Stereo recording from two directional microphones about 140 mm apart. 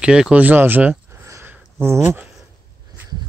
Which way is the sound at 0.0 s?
5° right (ahead or behind).